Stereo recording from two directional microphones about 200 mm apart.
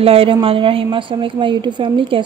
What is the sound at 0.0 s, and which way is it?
Speech, 30° right (ahead or behind).